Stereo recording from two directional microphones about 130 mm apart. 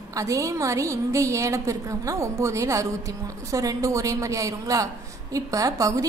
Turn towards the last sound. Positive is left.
turn(degrees=-25)  # may be behind; listen again after turning